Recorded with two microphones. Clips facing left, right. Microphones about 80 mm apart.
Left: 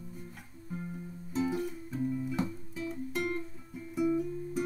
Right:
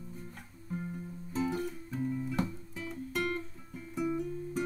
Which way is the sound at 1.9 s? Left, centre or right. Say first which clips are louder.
Left 1 dB; centre.